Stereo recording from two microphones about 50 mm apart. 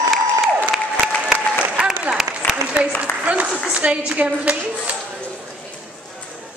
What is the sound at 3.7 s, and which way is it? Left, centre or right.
A woman's voice, right.